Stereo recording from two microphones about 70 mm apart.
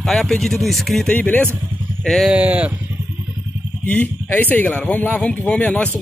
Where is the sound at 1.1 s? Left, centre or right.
Left.